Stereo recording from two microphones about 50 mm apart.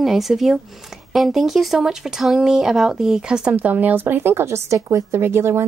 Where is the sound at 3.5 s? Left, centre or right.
Right.